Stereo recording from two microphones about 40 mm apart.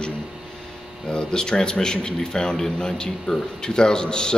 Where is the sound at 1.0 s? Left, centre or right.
Centre.